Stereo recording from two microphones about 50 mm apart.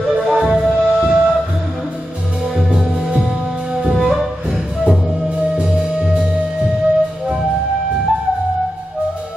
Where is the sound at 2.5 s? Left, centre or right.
Centre.